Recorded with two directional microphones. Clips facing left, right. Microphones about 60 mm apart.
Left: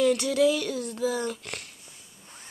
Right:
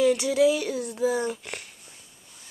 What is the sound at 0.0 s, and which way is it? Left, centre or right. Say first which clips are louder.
Speech: right 2 dB; centre.